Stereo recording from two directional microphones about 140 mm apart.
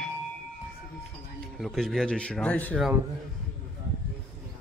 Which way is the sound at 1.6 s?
Centre (ahead or behind).